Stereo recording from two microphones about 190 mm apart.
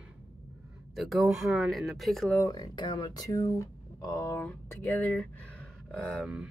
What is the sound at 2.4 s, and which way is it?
Speech, 20° left (ahead or behind).